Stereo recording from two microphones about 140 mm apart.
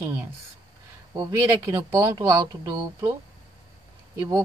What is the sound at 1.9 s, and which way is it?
Speech, 25° right (ahead or behind).